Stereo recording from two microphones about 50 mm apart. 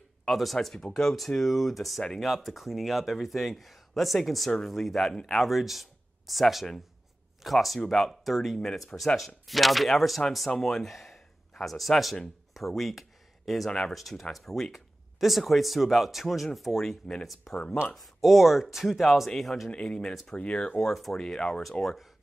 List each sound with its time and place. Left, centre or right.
0.2 s speech: centre
5.3 s speech: centre
13.7 s speech: centre
13.9 s speech: centre
17.9 s speech: centre
19.7 s speech: centre
20.8 s speech: centre
21.2 s speech: centre